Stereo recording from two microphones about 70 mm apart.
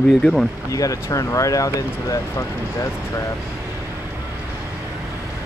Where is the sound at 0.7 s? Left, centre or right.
Left.